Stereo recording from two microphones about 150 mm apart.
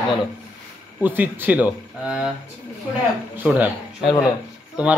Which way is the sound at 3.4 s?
10° right (ahead or behind).